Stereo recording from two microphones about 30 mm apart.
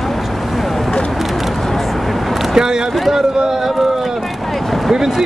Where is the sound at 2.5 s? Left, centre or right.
Right.